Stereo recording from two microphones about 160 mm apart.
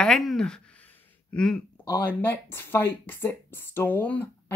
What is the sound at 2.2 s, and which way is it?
Speech, 15° left (ahead or behind).